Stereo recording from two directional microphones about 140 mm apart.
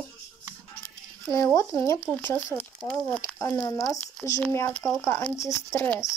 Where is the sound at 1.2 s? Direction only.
20° left (ahead or behind).